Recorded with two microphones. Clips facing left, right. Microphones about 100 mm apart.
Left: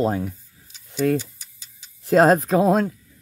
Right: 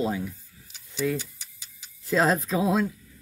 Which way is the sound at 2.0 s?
50° left (ahead or behind).